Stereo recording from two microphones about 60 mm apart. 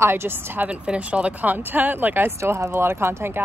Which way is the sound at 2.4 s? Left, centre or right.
Right.